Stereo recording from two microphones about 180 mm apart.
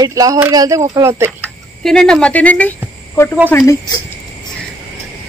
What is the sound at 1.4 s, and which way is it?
Speech, 5° left (ahead or behind).